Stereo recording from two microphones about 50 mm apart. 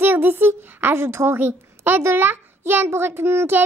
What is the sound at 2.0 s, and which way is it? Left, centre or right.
Child singing, right.